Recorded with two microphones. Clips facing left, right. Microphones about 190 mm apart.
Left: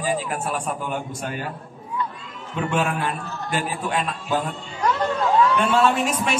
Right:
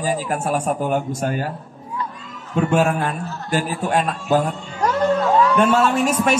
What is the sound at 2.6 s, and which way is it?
A man's voice, 45° right (ahead or behind).